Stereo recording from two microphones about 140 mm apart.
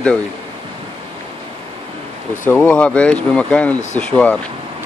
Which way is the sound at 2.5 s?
10° left (ahead or behind).